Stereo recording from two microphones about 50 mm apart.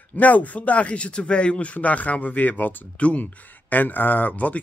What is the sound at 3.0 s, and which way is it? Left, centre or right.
Speech, left.